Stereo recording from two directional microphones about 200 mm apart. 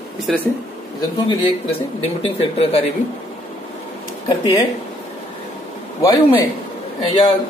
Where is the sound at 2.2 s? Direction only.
30° left (ahead or behind).